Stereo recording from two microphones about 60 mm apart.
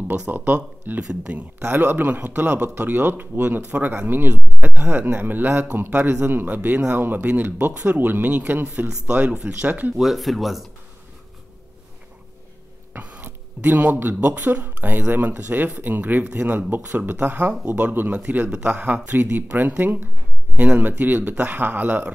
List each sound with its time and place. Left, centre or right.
0.3 s a man's voice: right
1.0 s speech: centre
1.7 s a man's voice: right
5.9 s a man's voice: right
8.6 s speech: centre
9.9 s speech: centre
13.0 s a sound: right
14.5 s a man's voice: right